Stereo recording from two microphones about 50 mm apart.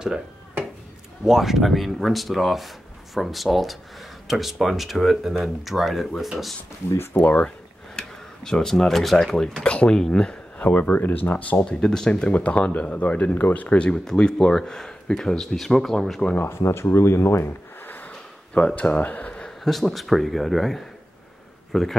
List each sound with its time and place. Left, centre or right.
1.2 s speech: centre
7.3 s a sound: centre
8.5 s speech: centre
10.6 s speech: left; by 12.3 s centre
12.3 s speech: left
13.8 s speech: centre
16.5 s speech: left
17.8 s a sound: left
18.8 s speech: left
19.6 s speech: centre